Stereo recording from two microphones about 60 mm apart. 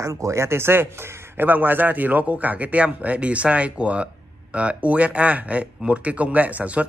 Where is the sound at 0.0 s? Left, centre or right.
Right.